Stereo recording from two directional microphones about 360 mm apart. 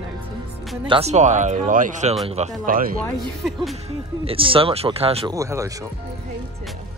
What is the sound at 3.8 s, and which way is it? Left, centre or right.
Speech, centre.